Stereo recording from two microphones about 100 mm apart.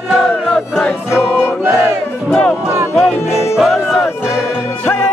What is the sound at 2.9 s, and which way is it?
Music, 25° left (ahead or behind).